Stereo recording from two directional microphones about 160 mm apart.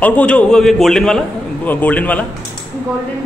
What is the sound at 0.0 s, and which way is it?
A man's voice, 10° left (ahead or behind).